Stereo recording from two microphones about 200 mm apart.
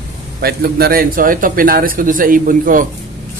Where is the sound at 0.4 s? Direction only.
50° right (ahead or behind).